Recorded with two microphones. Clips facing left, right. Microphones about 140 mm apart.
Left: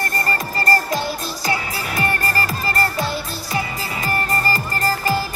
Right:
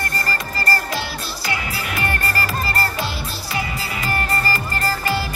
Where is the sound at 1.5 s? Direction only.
40° left (ahead or behind).